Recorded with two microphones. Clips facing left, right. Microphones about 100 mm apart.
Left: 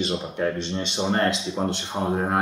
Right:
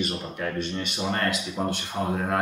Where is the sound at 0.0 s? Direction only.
25° left (ahead or behind).